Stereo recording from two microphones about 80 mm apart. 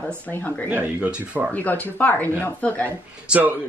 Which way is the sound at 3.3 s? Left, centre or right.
Right.